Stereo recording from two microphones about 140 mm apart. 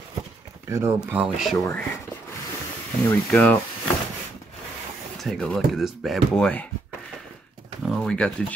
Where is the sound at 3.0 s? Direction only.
10° left (ahead or behind).